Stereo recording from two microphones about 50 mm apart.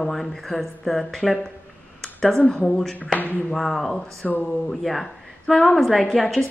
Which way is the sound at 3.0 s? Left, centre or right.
Left.